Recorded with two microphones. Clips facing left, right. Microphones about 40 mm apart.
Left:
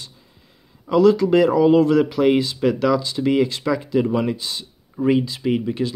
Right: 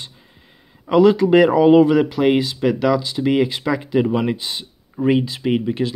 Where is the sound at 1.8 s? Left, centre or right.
Centre.